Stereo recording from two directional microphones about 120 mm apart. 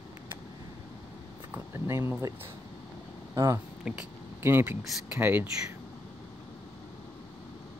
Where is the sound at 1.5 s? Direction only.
20° right (ahead or behind).